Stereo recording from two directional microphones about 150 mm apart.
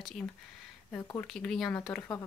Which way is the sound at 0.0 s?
5° left (ahead or behind).